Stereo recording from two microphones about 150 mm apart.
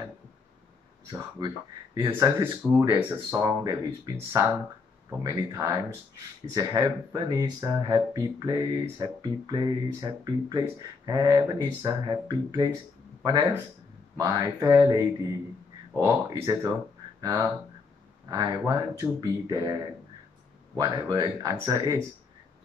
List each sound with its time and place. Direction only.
2.0 s speech: 20° right (ahead or behind)
3.3 s speech: 25° right (ahead or behind)
20.7 s speech: 25° right (ahead or behind)